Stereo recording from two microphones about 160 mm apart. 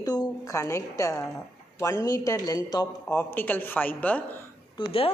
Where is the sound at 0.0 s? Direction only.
25° left (ahead or behind).